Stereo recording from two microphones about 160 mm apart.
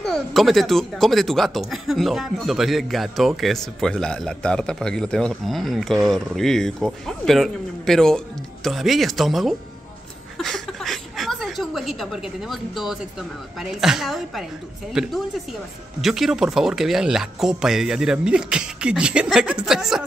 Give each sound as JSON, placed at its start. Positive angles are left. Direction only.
{"t": 0.0, "sound": "speech", "side_deg": 0}
{"t": 10.3, "sound": "a sound", "side_deg": 0}
{"t": 13.6, "sound": "speech", "side_deg": -5}